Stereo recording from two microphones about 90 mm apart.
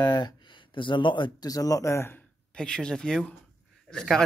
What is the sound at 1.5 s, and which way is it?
Speech, 40° left (ahead or behind).